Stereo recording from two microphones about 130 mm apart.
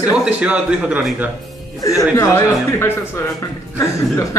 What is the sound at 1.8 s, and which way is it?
Speech, 25° left (ahead or behind).